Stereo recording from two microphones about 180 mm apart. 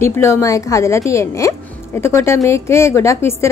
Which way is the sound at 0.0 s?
15° left (ahead or behind).